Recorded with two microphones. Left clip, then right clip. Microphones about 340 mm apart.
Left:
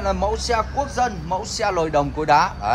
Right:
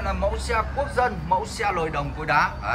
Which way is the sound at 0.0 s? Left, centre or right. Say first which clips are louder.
Left 4 dB; centre.